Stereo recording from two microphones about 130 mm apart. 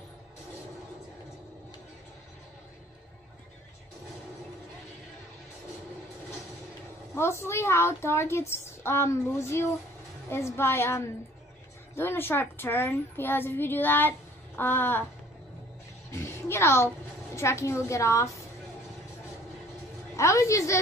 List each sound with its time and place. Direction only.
7.2 s a woman's voice: 20° left (ahead or behind)
16.1 s a woman's voice: 20° left (ahead or behind)
20.2 s a woman's voice: 25° left (ahead or behind)